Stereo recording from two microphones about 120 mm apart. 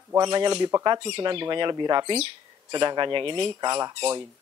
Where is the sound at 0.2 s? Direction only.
40° right (ahead or behind).